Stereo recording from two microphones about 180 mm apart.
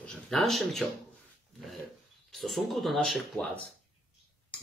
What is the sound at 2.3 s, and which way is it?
Speech, centre (ahead or behind).